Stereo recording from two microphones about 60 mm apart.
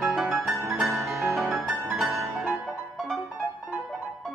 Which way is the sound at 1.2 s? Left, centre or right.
Right.